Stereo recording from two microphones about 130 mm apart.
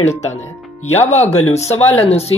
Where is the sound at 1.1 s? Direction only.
55° left (ahead or behind).